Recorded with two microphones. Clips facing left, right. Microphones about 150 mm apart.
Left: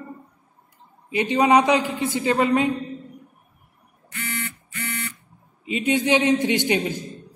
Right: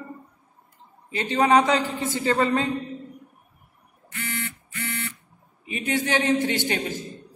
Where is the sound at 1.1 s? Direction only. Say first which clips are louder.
Left 2 dB; 15° left (ahead or behind).